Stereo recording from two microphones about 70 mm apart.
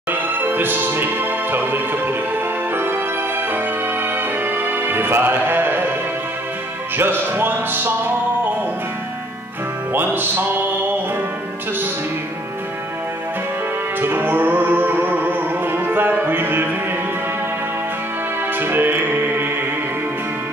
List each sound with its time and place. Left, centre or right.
0.1 s music: right
7.0 s music: right
9.9 s music: right
14.0 s music: right
18.6 s music: right